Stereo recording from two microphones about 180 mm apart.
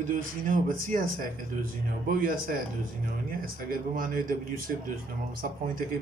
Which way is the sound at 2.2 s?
50° right (ahead or behind).